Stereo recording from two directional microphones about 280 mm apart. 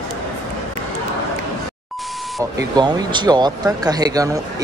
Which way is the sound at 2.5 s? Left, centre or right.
Centre.